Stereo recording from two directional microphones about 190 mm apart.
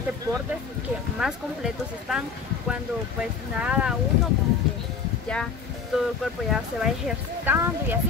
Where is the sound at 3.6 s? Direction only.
5° right (ahead or behind).